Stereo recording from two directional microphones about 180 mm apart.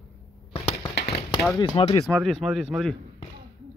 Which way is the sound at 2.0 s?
Centre (ahead or behind).